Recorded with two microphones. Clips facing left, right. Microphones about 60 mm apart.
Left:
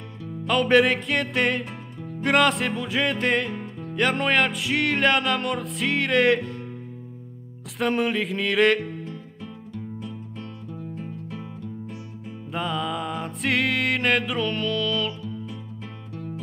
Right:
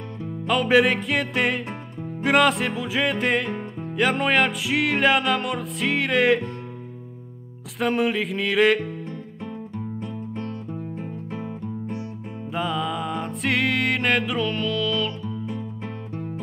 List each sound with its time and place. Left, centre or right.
0.5 s music: centre
7.8 s music: centre
10.0 s music: right
12.5 s music: centre